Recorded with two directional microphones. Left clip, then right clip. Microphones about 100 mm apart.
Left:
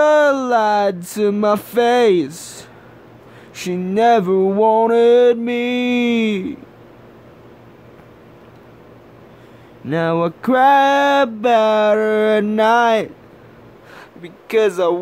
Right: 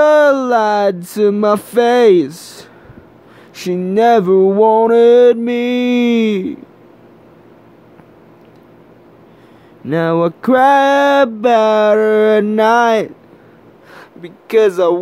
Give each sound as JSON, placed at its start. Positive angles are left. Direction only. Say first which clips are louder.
{"t": 0.0, "sound": "music", "louder": "right 4 dB", "side_deg": -30}
{"t": 3.5, "sound": "mantra", "louder": "right 4 dB", "side_deg": -25}
{"t": 9.8, "sound": "a sound", "louder": "right 4 dB", "side_deg": -30}
{"t": 13.9, "sound": "speech", "louder": "right 3 dB", "side_deg": -30}